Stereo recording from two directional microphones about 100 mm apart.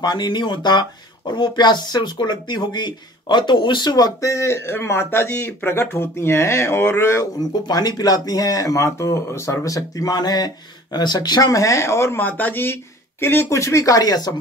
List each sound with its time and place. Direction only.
0.0 s speech: 45° left (ahead or behind); by 7.2 s 30° left (ahead or behind)
7.6 s speech: 45° left (ahead or behind)